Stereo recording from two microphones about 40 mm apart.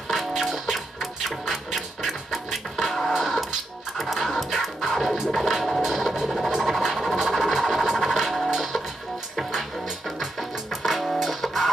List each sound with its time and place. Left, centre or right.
0.3 s music: centre
5.5 s a sound: centre
8.0 s music: centre
9.4 s music: centre
10.8 s music: centre